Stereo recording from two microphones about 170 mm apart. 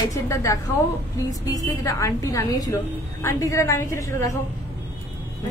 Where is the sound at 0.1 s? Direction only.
20° left (ahead or behind).